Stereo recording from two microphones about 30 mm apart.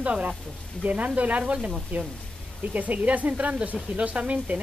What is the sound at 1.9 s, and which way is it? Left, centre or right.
A woman's voice, right.